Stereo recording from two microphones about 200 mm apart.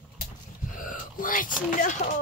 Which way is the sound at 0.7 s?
40° left (ahead or behind).